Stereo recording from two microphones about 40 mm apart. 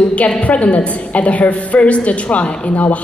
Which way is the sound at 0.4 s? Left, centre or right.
Left.